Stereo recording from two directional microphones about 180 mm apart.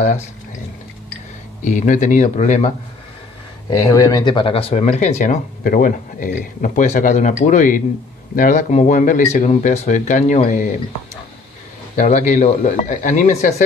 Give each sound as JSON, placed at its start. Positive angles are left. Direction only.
{"t": 1.6, "sound": "speech", "side_deg": 45}
{"t": 3.8, "sound": "speech", "side_deg": 20}
{"t": 12.0, "sound": "speech", "side_deg": 40}